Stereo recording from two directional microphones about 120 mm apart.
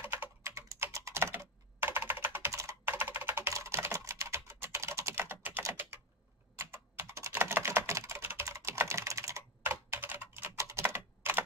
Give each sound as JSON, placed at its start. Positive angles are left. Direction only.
{"t": 0.0, "sound": "computer keyboard", "side_deg": -15}
{"t": 6.6, "sound": "typing", "side_deg": -20}